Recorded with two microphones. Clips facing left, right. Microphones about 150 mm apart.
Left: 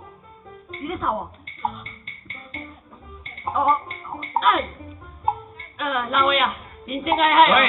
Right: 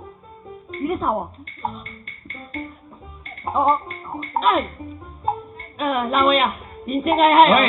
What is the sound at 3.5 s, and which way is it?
Speech, 25° right (ahead or behind).